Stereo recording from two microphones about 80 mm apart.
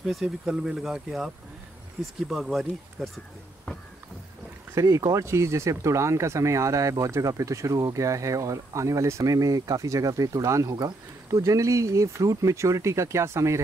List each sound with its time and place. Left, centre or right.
0.0 s speech: centre
4.7 s speech: right